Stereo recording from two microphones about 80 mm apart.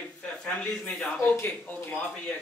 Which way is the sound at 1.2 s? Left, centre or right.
Left.